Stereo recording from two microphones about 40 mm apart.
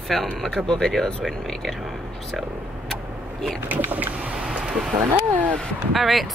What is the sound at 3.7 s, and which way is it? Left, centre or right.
Speech, right.